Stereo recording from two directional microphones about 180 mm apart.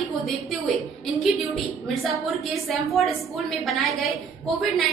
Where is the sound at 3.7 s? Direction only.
Centre (ahead or behind).